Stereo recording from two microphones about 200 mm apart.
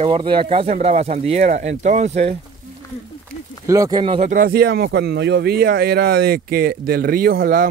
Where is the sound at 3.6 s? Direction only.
15° right (ahead or behind).